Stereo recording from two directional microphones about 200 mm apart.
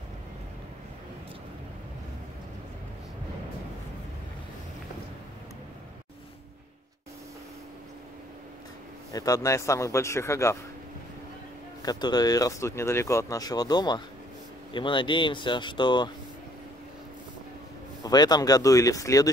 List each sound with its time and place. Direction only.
9.1 s a man's voice: 15° left (ahead or behind)
11.8 s speech: 20° left (ahead or behind)
18.0 s a man's voice: 20° left (ahead or behind)